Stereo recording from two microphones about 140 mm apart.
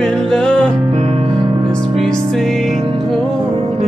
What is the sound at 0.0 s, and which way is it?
Music, 5° left (ahead or behind).